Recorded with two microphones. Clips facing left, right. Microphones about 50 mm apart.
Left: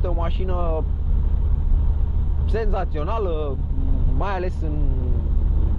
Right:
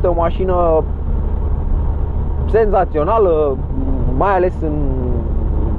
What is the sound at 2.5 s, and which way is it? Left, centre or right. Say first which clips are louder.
Speech: right 13 dB; right.